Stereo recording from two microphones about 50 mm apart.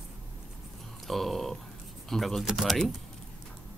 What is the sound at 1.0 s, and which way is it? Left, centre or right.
Speech, centre.